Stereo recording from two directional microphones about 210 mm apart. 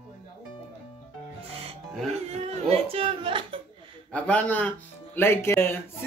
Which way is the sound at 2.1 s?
30° right (ahead or behind).